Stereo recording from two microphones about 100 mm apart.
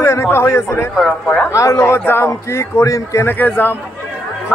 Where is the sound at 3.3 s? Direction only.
20° left (ahead or behind).